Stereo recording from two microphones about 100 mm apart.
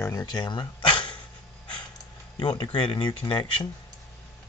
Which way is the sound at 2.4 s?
50° left (ahead or behind).